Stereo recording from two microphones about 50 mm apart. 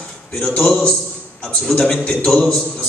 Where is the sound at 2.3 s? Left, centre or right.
Centre.